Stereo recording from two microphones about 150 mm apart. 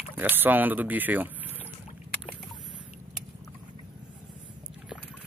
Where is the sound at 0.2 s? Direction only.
10° right (ahead or behind).